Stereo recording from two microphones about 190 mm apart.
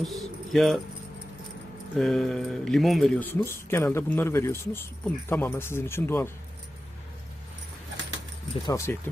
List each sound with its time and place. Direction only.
0.0 s speech: centre (ahead or behind)
2.0 s speech: 5° left (ahead or behind)
8.6 s speech: 15° left (ahead or behind)